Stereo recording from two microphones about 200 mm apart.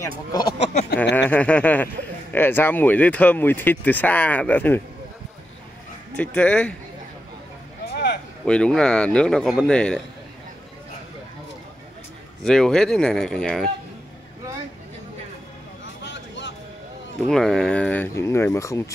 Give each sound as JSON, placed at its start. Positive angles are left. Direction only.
{"t": 0.3, "sound": "speech", "side_deg": 20}
{"t": 1.1, "sound": "speech", "side_deg": 5}
{"t": 6.1, "sound": "speech", "side_deg": 5}
{"t": 7.9, "sound": "a sound", "side_deg": 55}
{"t": 8.5, "sound": "speech", "side_deg": 5}
{"t": 12.4, "sound": "speech", "side_deg": 5}
{"t": 15.8, "sound": "vehicle", "side_deg": 60}
{"t": 17.3, "sound": "speech", "side_deg": 0}